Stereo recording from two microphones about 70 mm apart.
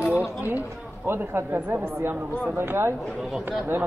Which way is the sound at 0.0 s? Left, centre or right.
Left.